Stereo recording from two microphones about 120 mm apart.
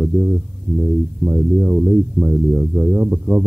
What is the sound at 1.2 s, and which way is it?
A man's voice, 15° right (ahead or behind).